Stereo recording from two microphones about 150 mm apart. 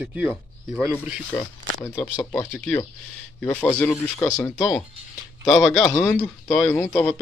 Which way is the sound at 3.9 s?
20° left (ahead or behind).